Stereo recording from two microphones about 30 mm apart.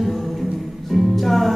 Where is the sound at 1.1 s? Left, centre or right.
Centre.